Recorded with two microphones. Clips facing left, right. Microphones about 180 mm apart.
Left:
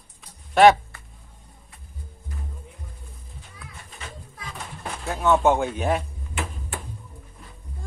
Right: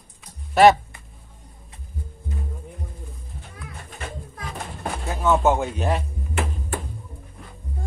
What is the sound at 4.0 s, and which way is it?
Music, 50° right (ahead or behind).